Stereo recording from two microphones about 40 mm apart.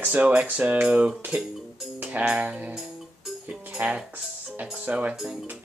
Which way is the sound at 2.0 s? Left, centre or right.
Right.